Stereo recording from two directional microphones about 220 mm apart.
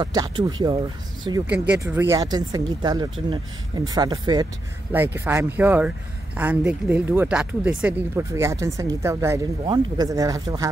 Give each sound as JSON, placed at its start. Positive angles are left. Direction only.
{"t": 0.0, "sound": "speech", "side_deg": -20}
{"t": 1.5, "sound": "speech", "side_deg": -5}